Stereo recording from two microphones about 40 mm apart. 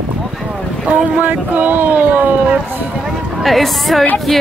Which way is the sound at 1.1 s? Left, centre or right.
Right.